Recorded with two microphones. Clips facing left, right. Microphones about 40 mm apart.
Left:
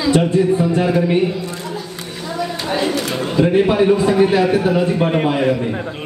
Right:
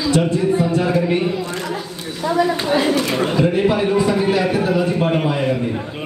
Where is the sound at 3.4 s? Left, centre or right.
Left.